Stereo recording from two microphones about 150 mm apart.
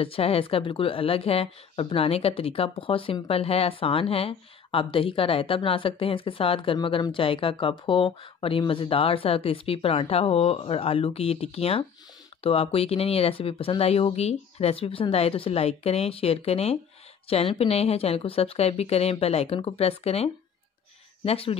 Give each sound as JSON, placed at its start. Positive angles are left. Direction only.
{"t": 0.0, "sound": "a woman's voice", "side_deg": 40}